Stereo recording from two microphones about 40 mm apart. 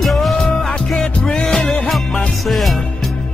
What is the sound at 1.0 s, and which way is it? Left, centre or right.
Music, left.